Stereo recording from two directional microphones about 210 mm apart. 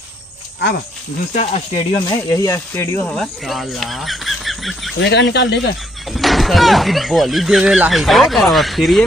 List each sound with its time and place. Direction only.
0.6 s speech: 50° left (ahead or behind)
1.3 s speech: 30° left (ahead or behind)
2.0 s speech: 15° left (ahead or behind); by 4.9 s centre (ahead or behind)
4.9 s speech: 60° left (ahead or behind)
6.1 s speech: centre (ahead or behind)